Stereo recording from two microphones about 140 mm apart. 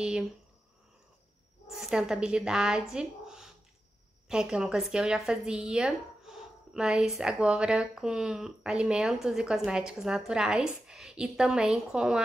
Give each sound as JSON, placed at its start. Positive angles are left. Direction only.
{"t": 0.0, "sound": "speech", "side_deg": -5}
{"t": 1.7, "sound": "speech", "side_deg": -5}